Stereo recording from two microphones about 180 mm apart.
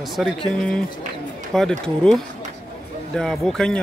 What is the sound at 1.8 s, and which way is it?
A man's voice, 5° left (ahead or behind).